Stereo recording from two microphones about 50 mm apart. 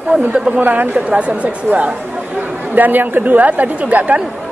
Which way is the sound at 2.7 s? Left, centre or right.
Right.